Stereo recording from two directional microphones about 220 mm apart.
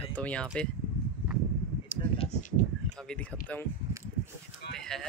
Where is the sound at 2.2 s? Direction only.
35° left (ahead or behind).